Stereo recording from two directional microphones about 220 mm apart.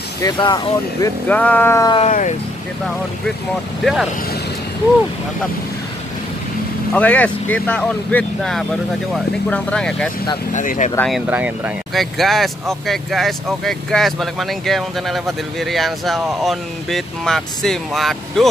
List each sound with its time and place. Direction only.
0.2 s speech: 20° left (ahead or behind)
1.0 s speech: 5° left (ahead or behind)
2.0 s speech: 35° left (ahead or behind)
3.8 s speech: centre (ahead or behind)
6.9 s speech: 5° left (ahead or behind)
10.5 s speech: 35° left (ahead or behind)
11.0 s speech: centre (ahead or behind)